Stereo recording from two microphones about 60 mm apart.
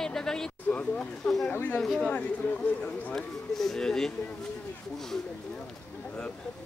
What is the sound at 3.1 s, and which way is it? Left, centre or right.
Speech, centre.